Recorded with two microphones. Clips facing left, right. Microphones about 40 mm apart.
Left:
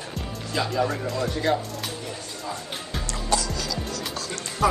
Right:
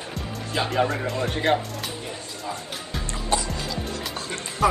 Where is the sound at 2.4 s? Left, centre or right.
Centre.